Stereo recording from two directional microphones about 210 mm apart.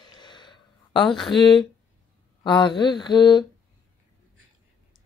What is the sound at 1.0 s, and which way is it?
Speech, centre (ahead or behind).